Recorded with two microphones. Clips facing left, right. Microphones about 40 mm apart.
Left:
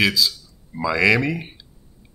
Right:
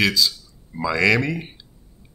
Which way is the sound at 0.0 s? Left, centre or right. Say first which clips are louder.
Even; centre.